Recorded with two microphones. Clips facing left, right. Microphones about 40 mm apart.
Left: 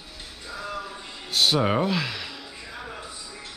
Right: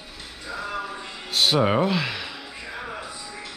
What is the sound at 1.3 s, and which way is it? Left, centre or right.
Speech, centre.